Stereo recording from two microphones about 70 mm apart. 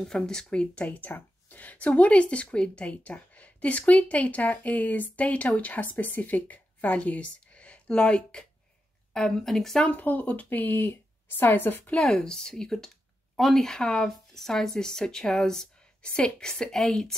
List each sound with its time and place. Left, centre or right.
0.0 s a woman's voice: centre
9.8 s speech: left
11.9 s speech: centre